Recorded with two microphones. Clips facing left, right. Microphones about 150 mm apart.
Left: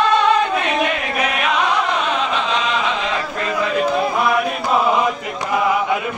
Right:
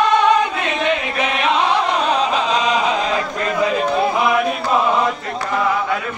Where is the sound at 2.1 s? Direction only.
40° right (ahead or behind).